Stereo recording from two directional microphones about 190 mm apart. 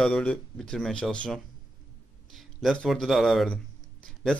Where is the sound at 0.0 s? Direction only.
5° left (ahead or behind).